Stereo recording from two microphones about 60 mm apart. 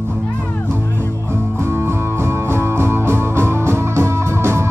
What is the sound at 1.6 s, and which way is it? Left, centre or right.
Music, right.